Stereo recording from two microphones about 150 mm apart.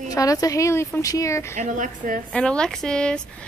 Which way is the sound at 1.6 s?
60° right (ahead or behind).